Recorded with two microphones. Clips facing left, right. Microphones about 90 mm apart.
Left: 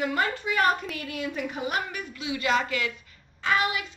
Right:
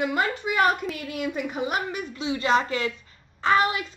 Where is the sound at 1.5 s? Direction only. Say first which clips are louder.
Right 3 dB; 25° right (ahead or behind).